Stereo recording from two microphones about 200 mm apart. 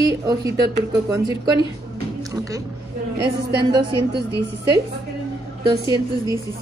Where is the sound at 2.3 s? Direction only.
15° right (ahead or behind).